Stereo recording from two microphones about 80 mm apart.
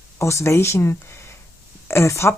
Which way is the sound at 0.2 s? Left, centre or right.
Left.